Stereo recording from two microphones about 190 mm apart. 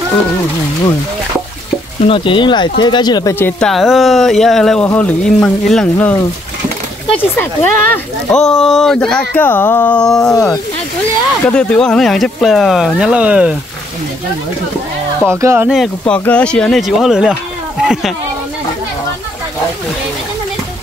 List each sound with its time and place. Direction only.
2.0 s speech: 25° left (ahead or behind); by 10.3 s 5° left (ahead or behind)
10.3 s speech: 15° left (ahead or behind)
11.4 s speech: 5° left (ahead or behind)
15.2 s speech: 10° right (ahead or behind)